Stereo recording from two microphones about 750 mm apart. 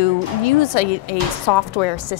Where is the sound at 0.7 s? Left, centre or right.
Left.